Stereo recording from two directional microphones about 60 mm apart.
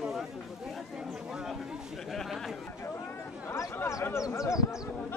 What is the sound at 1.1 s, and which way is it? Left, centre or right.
Chatter, centre.